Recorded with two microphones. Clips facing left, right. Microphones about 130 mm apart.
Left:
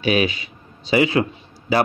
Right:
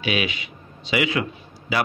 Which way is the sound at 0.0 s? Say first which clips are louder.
Left 6 dB; 40° left (ahead or behind).